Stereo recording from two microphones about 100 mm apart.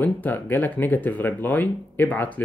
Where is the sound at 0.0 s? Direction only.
20° left (ahead or behind).